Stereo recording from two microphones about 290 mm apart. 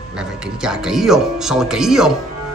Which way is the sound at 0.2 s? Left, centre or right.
Centre.